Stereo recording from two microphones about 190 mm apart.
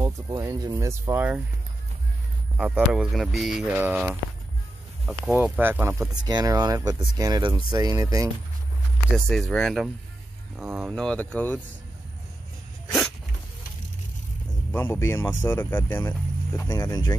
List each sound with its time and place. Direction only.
0.0 s speech: 20° right (ahead or behind)
2.5 s speech: 5° right (ahead or behind)
9.3 s speech: centre (ahead or behind)
14.7 s speech: 10° left (ahead or behind)